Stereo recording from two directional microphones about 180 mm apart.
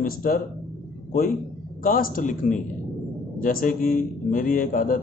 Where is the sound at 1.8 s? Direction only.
50° left (ahead or behind).